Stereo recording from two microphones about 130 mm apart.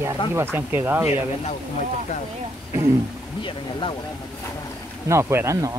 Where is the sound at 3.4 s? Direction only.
40° left (ahead or behind).